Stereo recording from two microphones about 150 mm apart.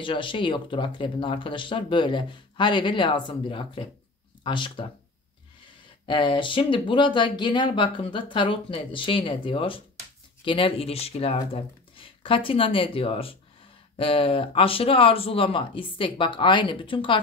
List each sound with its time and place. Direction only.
0.0 s speech: 35° left (ahead or behind)
6.0 s speech: 35° left (ahead or behind)